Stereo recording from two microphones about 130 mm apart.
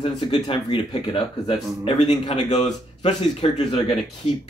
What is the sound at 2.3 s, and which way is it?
Speech, 60° left (ahead or behind).